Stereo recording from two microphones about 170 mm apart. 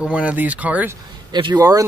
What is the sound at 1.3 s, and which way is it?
Speech, 25° right (ahead or behind).